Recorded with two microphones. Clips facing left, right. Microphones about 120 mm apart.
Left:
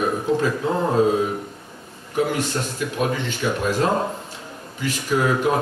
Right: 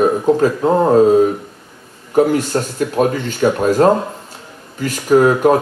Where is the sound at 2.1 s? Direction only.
45° right (ahead or behind).